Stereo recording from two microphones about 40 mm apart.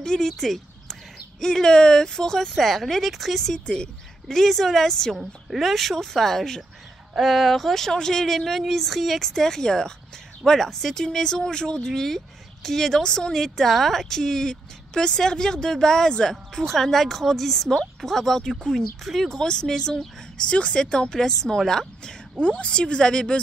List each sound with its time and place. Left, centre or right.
0.0 s a woman's voice: centre
2.5 s a woman's voice: centre
3.6 s speech: left
4.3 s a woman's voice: centre
4.8 s a woman's voice: centre
5.6 s a woman's voice: centre
13.0 s speech: left
13.3 s a woman's voice: centre
18.6 s a woman's voice: centre
21.2 s a woman's voice: centre
22.4 s speech: left